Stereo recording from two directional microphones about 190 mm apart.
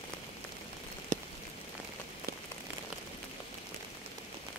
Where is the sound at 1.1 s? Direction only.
40° right (ahead or behind).